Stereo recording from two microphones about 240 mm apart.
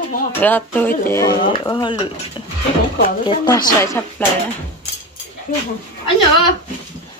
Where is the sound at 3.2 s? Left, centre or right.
Centre.